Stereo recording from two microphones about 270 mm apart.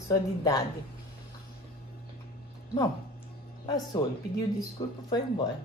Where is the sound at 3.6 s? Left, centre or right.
Centre.